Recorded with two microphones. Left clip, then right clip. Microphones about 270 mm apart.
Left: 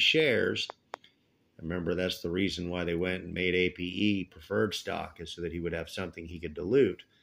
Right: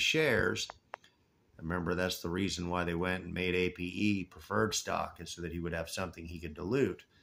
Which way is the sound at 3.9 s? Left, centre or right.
Right.